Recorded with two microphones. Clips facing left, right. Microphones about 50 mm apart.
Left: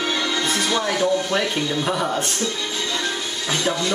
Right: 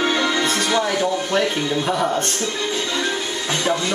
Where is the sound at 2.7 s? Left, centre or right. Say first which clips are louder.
Right 3 dB; centre.